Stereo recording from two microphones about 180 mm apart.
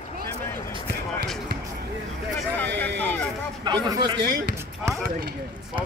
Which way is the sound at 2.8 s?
10° left (ahead or behind).